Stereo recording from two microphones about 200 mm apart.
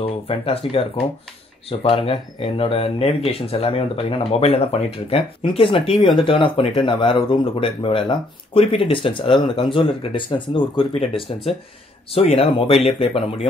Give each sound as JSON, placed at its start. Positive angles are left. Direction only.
{"t": 0.0, "sound": "speech", "side_deg": 30}